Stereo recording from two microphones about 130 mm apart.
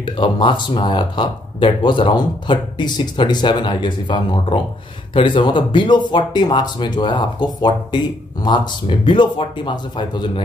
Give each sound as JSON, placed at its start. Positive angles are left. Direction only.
{"t": 0.0, "sound": "speech", "side_deg": 40}